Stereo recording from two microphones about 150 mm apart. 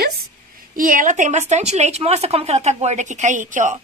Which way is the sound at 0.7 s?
65° right (ahead or behind).